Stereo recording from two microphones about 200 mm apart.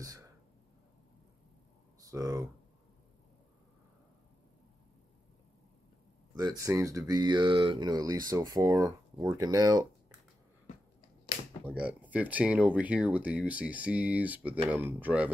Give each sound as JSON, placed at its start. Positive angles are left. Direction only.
{"t": 0.0, "sound": "whispering", "side_deg": -15}
{"t": 2.0, "sound": "speech", "side_deg": -15}
{"t": 6.3, "sound": "speech", "side_deg": -20}
{"t": 11.6, "sound": "speech", "side_deg": -10}